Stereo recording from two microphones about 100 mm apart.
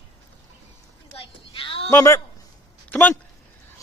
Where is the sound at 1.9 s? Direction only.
25° left (ahead or behind).